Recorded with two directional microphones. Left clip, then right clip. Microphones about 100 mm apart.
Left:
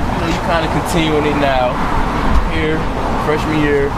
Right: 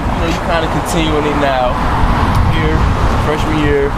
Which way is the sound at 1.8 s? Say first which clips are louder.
Right 2 dB; 30° right (ahead or behind).